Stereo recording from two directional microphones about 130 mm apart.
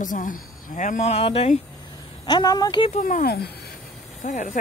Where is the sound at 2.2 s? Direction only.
30° left (ahead or behind).